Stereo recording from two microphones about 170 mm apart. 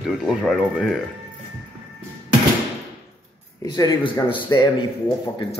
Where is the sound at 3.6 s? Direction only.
25° left (ahead or behind).